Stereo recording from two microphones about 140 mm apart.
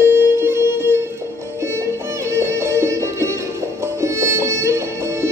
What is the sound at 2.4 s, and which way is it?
Music, 20° right (ahead or behind).